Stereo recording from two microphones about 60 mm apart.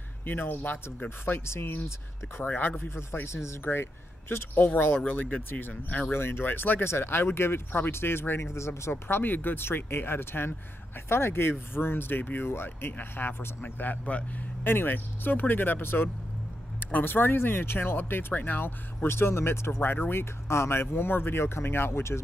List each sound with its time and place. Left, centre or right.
0.2 s speech: left
2.4 s speech: left
5.1 s speech: left
6.1 s speech: left
8.9 s speech: left
14.6 s speech: left
19.0 s speech: left